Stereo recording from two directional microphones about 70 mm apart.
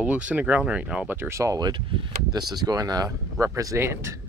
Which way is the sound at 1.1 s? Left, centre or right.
Right.